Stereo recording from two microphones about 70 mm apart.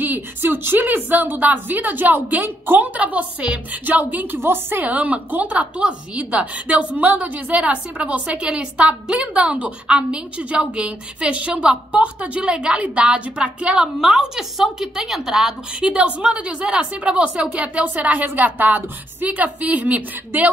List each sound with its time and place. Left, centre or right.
0.0 s a woman's voice: right